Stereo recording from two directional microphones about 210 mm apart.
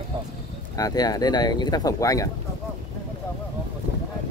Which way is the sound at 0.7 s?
15° left (ahead or behind).